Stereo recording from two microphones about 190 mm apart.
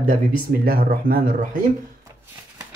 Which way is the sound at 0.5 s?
50° right (ahead or behind).